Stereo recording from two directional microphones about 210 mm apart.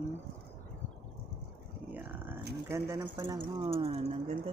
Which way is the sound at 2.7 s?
15° right (ahead or behind).